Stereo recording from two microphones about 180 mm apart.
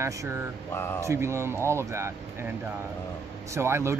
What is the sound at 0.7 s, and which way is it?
Speech, 15° left (ahead or behind).